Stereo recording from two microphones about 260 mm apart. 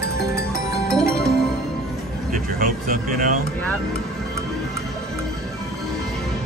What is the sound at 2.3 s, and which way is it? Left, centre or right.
Speech, right.